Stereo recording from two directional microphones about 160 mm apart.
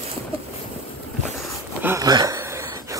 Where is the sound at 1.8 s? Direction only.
15° right (ahead or behind).